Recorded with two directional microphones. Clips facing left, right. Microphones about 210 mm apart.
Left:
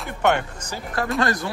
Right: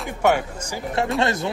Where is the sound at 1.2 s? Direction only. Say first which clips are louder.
Right 1 dB; 25° right (ahead or behind).